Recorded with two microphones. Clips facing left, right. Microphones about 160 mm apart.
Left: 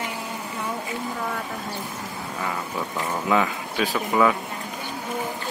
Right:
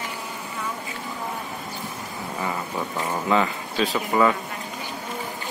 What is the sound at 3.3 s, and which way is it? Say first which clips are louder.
Speech: even; 5° left (ahead or behind).